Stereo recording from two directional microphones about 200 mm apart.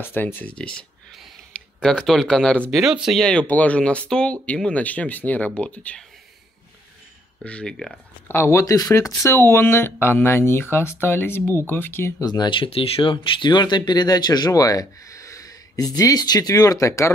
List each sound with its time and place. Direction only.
0.0 s speech: 10° left (ahead or behind)
7.4 s speech: 5° left (ahead or behind)